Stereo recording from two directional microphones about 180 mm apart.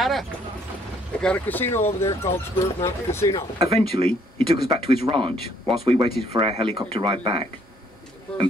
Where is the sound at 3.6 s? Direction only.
35° right (ahead or behind).